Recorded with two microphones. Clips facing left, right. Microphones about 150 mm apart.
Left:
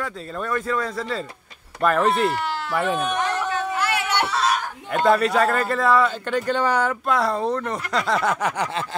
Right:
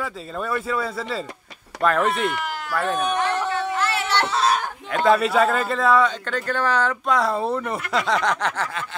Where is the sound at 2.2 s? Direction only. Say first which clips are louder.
Left 2 dB; 30° left (ahead or behind).